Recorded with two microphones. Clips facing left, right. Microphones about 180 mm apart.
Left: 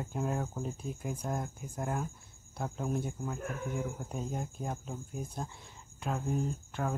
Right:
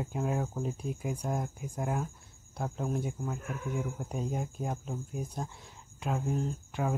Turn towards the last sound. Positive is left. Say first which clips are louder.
# right 2 dB
turn(degrees=0)  # may be behind; listen again after turning